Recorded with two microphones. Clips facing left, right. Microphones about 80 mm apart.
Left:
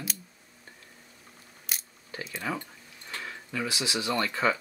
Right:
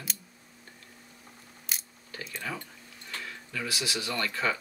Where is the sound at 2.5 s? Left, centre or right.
Left.